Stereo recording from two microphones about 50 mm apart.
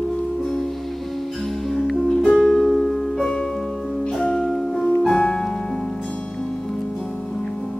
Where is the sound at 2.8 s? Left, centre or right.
Centre.